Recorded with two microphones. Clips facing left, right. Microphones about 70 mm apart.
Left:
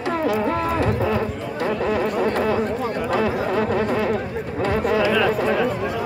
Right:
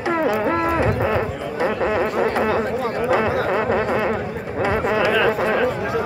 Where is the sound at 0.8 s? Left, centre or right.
Right.